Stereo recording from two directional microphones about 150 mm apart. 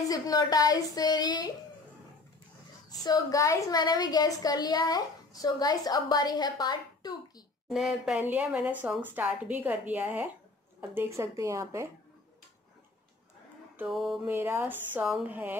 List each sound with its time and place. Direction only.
0.1 s a woman's voice: 25° left (ahead or behind)
3.0 s a woman's voice: 25° left (ahead or behind)
7.6 s a woman's voice: 5° right (ahead or behind); by 11.9 s 20° right (ahead or behind)
13.8 s a sound: centre (ahead or behind)
14.2 s a woman's voice: 15° right (ahead or behind)